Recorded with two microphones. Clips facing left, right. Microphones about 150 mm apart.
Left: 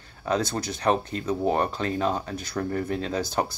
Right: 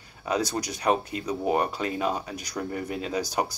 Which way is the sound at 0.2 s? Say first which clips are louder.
Left 1 dB; 10° right (ahead or behind).